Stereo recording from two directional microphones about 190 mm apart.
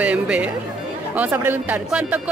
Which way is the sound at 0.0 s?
5° right (ahead or behind).